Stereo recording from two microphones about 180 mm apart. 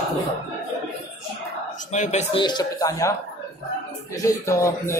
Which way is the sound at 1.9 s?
40° left (ahead or behind).